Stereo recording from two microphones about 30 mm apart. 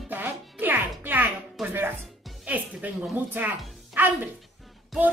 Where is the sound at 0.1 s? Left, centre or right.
Right.